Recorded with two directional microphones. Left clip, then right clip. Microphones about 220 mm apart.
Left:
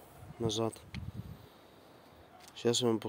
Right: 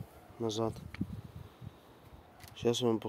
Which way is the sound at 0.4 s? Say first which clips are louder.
Even; 5° left (ahead or behind).